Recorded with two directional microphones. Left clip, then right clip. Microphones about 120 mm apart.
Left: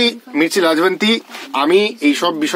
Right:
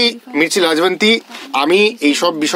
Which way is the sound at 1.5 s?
30° right (ahead or behind).